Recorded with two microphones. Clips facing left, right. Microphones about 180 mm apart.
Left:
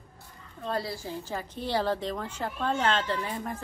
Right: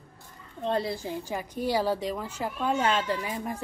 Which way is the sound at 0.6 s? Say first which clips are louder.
Right 4 dB; 20° right (ahead or behind).